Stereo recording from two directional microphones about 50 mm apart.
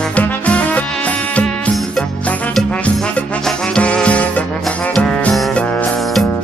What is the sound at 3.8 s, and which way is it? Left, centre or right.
Music, left.